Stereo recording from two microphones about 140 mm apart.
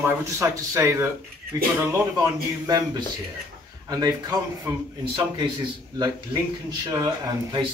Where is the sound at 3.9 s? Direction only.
25° right (ahead or behind).